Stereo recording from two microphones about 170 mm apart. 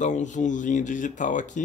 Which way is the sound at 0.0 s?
45° left (ahead or behind).